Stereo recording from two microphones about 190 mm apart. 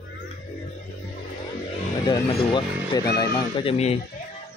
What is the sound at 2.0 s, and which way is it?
Speech, 25° left (ahead or behind).